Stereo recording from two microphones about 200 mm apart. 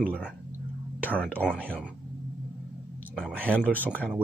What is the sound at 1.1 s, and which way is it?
Speech, 5° left (ahead or behind).